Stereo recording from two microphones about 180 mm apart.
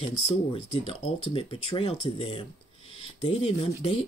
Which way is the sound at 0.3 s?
30° left (ahead or behind).